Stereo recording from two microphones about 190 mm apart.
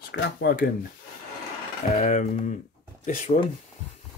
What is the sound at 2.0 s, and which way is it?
Speech, 40° left (ahead or behind).